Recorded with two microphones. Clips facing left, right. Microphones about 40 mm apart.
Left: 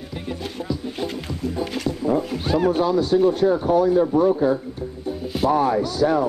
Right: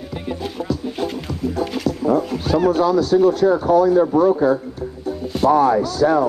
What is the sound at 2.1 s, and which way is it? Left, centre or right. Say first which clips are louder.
Wild animals: right 3 dB; centre.